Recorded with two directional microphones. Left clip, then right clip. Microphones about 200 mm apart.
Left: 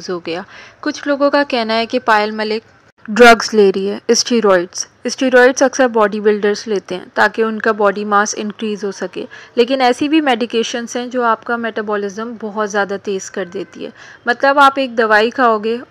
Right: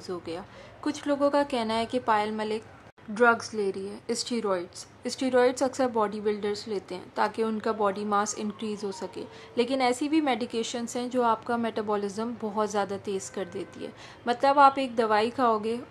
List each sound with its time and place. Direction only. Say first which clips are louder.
0.1 s a woman's voice: left 13 dB; 20° left (ahead or behind)
0.8 s a woman's voice: left 11 dB; 10° left (ahead or behind)
3.2 s a woman's voice: left 16 dB; 35° left (ahead or behind); by 15.8 s 15° left (ahead or behind)